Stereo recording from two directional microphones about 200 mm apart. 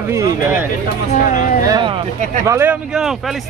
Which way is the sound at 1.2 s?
45° left (ahead or behind).